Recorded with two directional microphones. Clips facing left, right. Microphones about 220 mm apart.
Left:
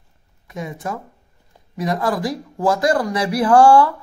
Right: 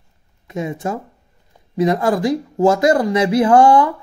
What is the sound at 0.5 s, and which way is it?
A woman's voice, 25° right (ahead or behind).